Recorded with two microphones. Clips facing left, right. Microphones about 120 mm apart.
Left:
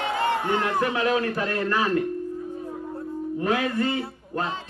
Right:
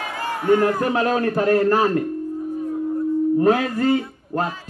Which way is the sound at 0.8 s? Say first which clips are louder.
Right 3 dB; 40° right (ahead or behind).